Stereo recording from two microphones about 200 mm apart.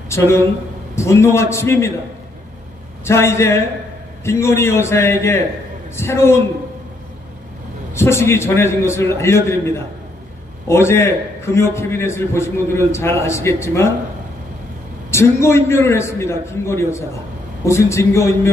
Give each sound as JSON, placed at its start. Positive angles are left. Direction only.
{"t": 0.1, "sound": "a man's voice", "side_deg": 15}
{"t": 3.1, "sound": "a man's voice", "side_deg": 15}
{"t": 7.9, "sound": "a man's voice", "side_deg": 15}
{"t": 15.0, "sound": "a man's voice", "side_deg": 15}